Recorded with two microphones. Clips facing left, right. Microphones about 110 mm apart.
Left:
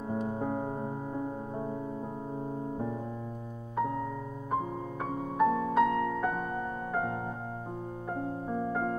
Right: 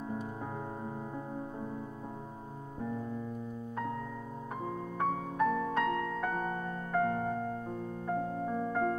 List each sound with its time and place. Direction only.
4.9 s music: 15° left (ahead or behind)